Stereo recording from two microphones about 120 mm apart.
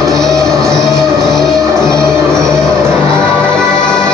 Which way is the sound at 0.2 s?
5° left (ahead or behind).